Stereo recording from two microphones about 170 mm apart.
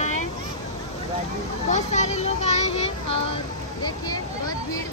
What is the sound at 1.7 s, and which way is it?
A child's voice, 45° left (ahead or behind).